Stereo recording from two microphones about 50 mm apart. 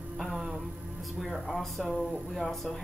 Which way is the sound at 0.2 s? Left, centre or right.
Centre.